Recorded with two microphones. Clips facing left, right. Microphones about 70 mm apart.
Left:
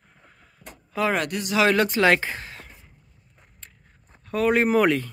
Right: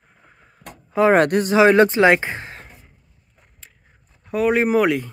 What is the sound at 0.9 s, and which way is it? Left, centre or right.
Speech, right.